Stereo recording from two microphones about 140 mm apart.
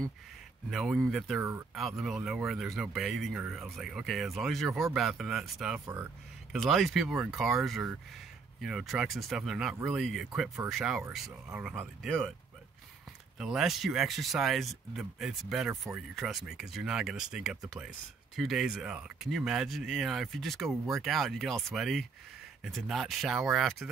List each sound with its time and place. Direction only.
0.7 s speech: centre (ahead or behind)
13.4 s speech: 5° right (ahead or behind)